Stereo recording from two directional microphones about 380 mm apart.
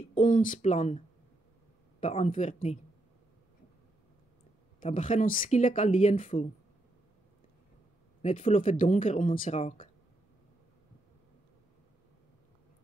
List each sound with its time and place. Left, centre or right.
0.1 s speech: centre
4.7 s speech: centre
8.2 s speech: centre